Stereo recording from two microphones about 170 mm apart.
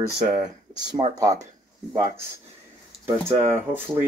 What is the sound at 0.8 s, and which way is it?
Speech, 25° right (ahead or behind).